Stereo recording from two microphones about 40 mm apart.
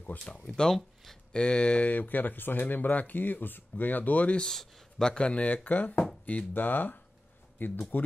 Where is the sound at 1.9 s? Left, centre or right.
Left.